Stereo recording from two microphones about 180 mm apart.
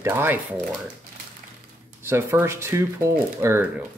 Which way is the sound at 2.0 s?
15° right (ahead or behind).